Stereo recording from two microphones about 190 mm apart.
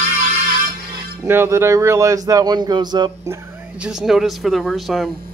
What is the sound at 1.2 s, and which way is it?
A man's voice, 10° right (ahead or behind).